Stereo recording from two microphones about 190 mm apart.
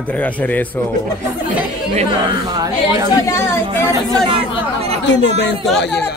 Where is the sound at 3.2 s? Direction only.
15° left (ahead or behind).